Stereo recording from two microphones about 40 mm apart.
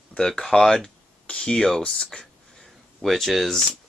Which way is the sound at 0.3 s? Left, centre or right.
Centre.